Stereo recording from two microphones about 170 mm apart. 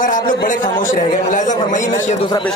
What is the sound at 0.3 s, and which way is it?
Speech, 50° left (ahead or behind).